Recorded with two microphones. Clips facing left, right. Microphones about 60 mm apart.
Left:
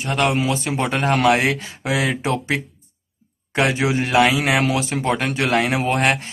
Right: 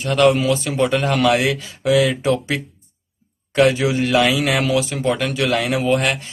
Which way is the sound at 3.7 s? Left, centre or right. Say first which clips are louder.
Right 2 dB; left.